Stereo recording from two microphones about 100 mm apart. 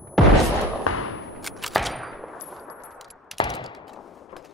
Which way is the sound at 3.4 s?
45° left (ahead or behind).